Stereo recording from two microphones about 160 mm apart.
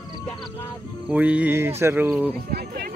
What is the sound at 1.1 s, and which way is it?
Speech, 10° right (ahead or behind).